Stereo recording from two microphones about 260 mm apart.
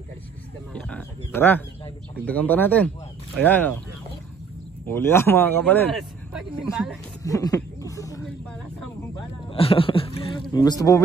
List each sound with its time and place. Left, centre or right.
0.7 s speech: centre
4.8 s speech: centre
7.2 s speech: centre
9.5 s speech: left